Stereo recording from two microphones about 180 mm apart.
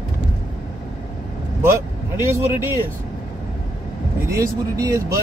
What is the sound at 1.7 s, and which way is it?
Speech, 15° right (ahead or behind).